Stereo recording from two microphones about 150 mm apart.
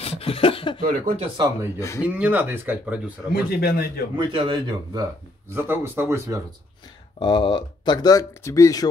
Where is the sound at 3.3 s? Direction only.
90° left.